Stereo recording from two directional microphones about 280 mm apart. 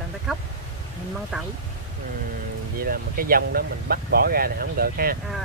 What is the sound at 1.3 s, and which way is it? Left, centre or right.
Speech, centre.